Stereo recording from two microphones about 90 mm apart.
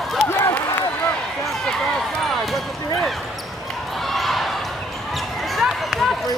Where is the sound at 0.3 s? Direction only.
30° left (ahead or behind).